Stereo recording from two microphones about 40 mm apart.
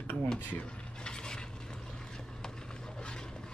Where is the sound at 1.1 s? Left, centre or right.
Centre.